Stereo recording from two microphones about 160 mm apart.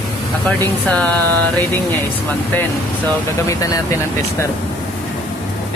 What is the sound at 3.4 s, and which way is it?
Speech, 20° left (ahead or behind).